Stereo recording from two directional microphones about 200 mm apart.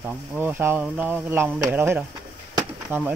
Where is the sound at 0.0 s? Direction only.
10° right (ahead or behind).